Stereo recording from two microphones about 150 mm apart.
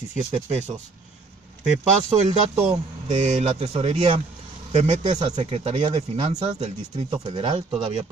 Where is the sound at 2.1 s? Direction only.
45° right (ahead or behind).